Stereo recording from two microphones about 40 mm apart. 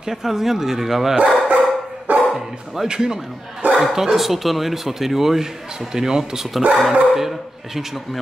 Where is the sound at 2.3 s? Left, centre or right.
Centre.